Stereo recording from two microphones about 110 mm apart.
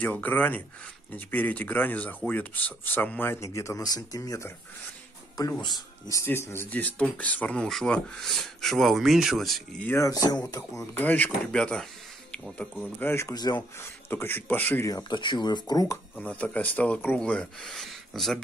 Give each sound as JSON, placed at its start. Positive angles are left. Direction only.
{"t": 0.0, "sound": "speech", "side_deg": 15}
{"t": 5.6, "sound": "speech", "side_deg": 35}
{"t": 9.8, "sound": "speech", "side_deg": 30}
{"t": 11.0, "sound": "speech", "side_deg": 15}
{"t": 13.3, "sound": "speech", "side_deg": 40}
{"t": 13.7, "sound": "speech", "side_deg": 20}
{"t": 14.9, "sound": "speech", "side_deg": 30}
{"t": 15.1, "sound": "speech", "side_deg": 45}
{"t": 16.2, "sound": "speech", "side_deg": 10}